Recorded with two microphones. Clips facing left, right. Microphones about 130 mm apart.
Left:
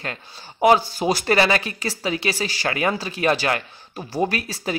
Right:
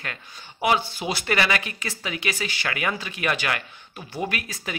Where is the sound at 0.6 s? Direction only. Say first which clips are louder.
Left 7 dB; 40° left (ahead or behind).